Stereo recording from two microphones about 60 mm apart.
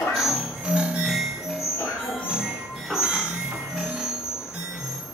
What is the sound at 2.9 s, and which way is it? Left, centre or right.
Music, centre.